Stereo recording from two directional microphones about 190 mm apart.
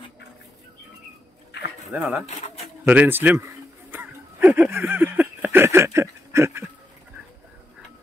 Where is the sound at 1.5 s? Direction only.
60° left (ahead or behind).